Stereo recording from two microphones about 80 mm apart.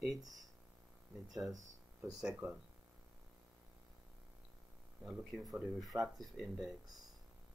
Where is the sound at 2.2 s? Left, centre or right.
Centre.